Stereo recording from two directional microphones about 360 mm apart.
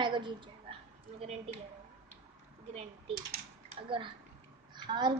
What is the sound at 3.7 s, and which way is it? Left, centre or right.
Speech, centre.